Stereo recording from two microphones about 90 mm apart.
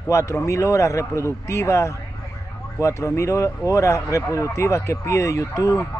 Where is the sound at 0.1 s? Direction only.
35° left (ahead or behind).